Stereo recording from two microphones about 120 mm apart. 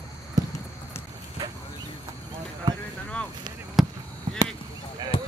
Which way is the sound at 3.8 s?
Centre (ahead or behind).